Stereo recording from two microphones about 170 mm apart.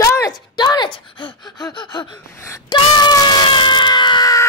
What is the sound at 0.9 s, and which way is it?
Gasp, 30° left (ahead or behind).